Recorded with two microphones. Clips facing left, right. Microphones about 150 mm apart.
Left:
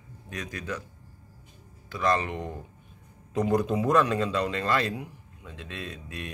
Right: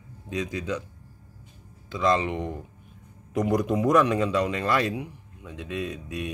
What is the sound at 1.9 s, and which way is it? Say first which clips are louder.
Speech: right 3 dB; 20° right (ahead or behind).